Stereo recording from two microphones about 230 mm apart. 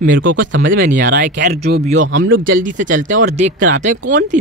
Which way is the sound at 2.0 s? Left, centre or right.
Right.